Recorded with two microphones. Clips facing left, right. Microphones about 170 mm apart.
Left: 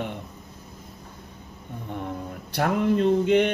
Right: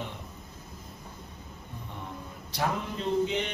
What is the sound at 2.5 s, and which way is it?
Speech, 60° left (ahead or behind).